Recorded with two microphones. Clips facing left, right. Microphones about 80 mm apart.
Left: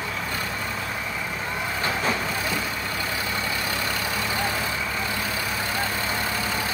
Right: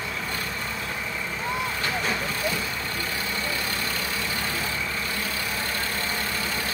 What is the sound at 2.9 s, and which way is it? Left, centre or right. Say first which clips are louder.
Vehicle: left 2 dB; centre.